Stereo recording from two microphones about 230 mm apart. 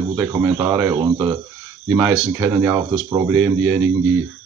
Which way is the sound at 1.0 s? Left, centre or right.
Centre.